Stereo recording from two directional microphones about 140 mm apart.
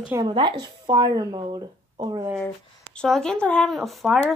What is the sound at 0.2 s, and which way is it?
A woman's voice, 30° right (ahead or behind).